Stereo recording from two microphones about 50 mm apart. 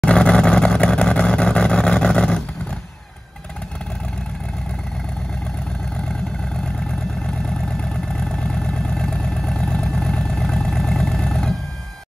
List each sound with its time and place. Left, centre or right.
0.0 s vehicle: centre
7.2 s vehicle: centre